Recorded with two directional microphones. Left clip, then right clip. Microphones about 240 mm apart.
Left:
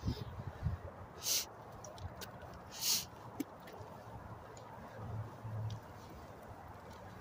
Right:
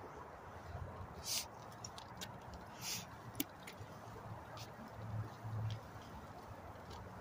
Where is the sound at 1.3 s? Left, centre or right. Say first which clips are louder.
Left 6 dB; left.